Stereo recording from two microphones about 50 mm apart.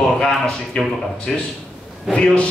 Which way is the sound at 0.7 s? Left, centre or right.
Centre.